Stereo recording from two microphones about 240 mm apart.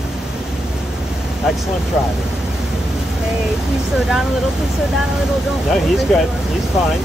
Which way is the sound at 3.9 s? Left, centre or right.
Centre.